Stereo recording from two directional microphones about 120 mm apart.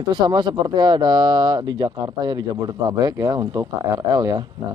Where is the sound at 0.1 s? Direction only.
35° right (ahead or behind).